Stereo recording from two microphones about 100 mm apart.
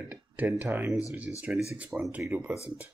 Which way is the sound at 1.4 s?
5° right (ahead or behind).